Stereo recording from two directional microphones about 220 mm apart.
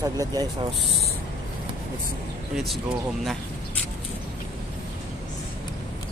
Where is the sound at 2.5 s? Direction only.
Centre (ahead or behind).